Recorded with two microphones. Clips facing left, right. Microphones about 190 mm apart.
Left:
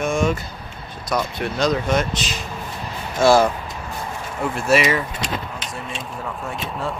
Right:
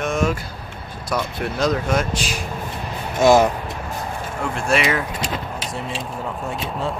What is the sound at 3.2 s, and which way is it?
Speech, 20° right (ahead or behind).